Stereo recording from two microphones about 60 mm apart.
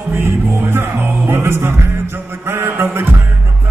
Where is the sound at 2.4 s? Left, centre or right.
Right.